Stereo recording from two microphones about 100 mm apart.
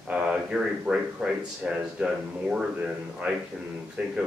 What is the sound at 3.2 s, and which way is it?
Speech, 15° right (ahead or behind).